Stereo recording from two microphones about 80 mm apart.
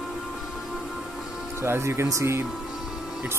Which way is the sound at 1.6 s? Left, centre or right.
Right.